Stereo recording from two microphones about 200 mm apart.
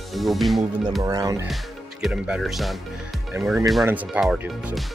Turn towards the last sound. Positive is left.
turn(degrees=-5)  # may be behind; listen again after turning